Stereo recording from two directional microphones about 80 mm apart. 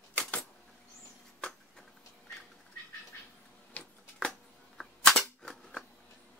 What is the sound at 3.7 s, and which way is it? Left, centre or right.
Cap gun, centre.